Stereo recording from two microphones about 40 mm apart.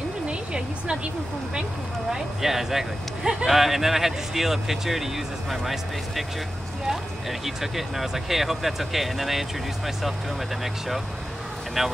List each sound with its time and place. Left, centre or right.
0.3 s speech: right
2.0 s speech: centre
11.8 s speech: centre